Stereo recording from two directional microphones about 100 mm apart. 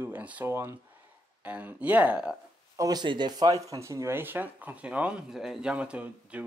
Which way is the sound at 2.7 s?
40° right (ahead or behind).